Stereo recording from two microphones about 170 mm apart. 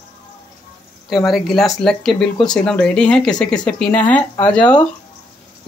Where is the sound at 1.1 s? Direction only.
Centre (ahead or behind).